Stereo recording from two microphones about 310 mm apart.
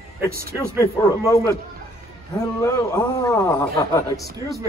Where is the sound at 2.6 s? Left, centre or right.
Centre.